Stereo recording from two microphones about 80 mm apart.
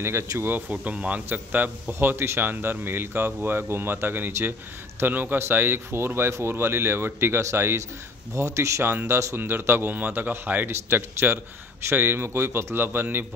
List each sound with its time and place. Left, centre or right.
0.4 s a man's voice: right